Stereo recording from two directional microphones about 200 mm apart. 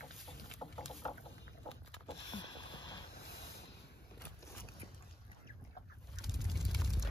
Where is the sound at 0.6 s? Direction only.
15° left (ahead or behind).